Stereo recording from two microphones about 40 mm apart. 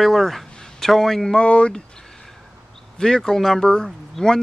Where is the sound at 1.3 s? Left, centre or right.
Left.